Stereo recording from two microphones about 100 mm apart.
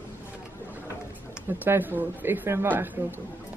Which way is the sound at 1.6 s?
20° right (ahead or behind).